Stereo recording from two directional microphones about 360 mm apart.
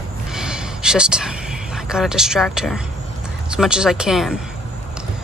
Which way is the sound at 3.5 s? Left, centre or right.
Centre.